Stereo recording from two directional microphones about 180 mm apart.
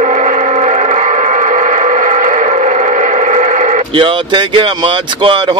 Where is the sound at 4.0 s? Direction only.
25° right (ahead or behind).